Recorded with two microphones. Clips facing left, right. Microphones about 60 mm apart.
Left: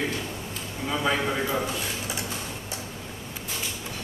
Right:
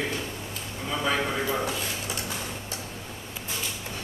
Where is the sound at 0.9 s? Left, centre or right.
Centre.